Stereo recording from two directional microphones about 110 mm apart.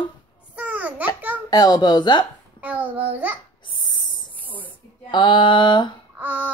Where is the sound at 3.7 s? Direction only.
40° left (ahead or behind).